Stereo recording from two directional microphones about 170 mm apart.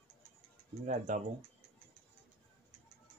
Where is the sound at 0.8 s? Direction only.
45° right (ahead or behind).